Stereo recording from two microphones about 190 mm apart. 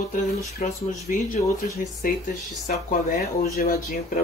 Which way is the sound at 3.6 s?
50° left (ahead or behind).